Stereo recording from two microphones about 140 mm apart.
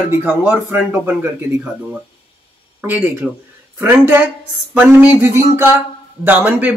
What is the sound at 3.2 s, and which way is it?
Speech, 5° right (ahead or behind).